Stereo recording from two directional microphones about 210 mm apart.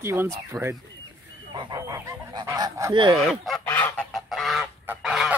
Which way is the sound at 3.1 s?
Centre (ahead or behind).